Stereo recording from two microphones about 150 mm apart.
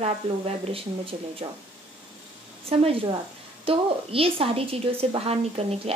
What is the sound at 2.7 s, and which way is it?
A woman's voice, 40° right (ahead or behind).